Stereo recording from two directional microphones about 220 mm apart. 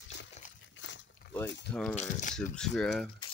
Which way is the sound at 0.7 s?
55° left (ahead or behind).